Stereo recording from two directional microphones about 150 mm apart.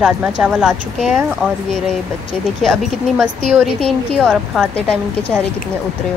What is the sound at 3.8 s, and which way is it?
Speech, 5° left (ahead or behind).